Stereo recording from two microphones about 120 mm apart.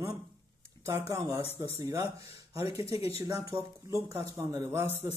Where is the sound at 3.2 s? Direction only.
30° right (ahead or behind).